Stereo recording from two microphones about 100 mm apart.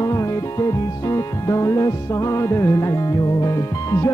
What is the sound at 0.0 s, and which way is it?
Music, 30° left (ahead or behind).